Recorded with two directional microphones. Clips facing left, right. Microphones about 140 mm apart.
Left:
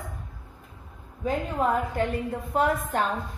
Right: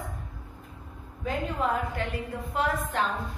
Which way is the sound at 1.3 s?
45° left (ahead or behind).